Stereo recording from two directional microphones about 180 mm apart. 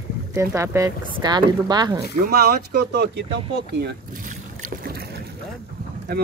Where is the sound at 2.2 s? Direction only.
60° right (ahead or behind).